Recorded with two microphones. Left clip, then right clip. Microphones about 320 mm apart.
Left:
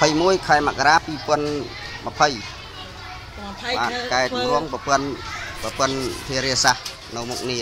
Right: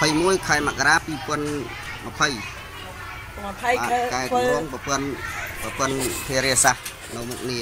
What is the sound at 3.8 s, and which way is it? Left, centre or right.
Speech, centre.